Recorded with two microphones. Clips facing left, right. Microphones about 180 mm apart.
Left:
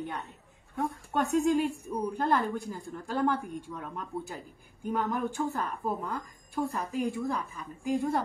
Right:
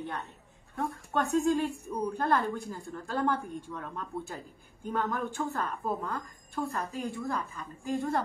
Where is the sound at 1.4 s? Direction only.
15° left (ahead or behind).